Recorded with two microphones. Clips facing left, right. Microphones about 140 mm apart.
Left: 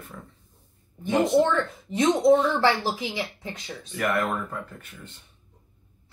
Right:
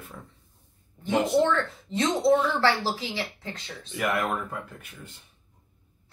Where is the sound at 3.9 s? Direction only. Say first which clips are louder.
Left 1 dB; 5° right (ahead or behind).